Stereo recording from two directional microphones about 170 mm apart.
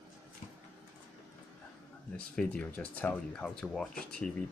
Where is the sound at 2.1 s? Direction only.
5° left (ahead or behind).